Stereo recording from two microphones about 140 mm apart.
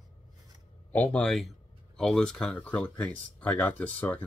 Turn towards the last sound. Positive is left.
turn(degrees=10)  # may be behind; listen again after turning